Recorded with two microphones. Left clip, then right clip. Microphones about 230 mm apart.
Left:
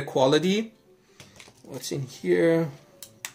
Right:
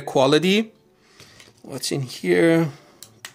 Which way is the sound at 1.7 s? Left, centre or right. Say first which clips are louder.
Right 6 dB; right.